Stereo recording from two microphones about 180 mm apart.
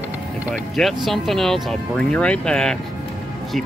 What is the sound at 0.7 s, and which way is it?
Speech, centre (ahead or behind).